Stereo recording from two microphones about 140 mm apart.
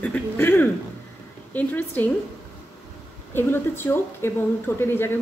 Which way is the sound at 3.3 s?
15° left (ahead or behind).